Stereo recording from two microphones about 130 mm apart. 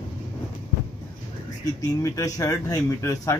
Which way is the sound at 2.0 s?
25° left (ahead or behind).